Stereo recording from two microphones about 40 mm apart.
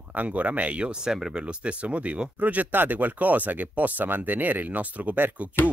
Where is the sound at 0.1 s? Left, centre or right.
Right.